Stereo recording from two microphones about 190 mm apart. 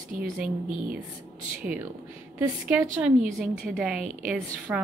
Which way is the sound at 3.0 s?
Centre (ahead or behind).